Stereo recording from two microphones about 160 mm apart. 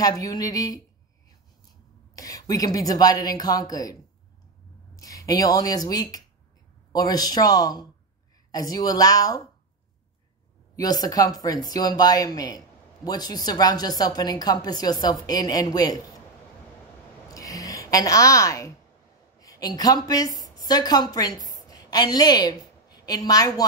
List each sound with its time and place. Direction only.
0.0 s speech: 25° left (ahead or behind)
2.1 s speech: 20° left (ahead or behind)
4.9 s speech: 20° left (ahead or behind)
10.8 s speech: 25° left (ahead or behind)
17.3 s a sound: 20° left (ahead or behind)
19.4 s a woman's voice: 25° left (ahead or behind)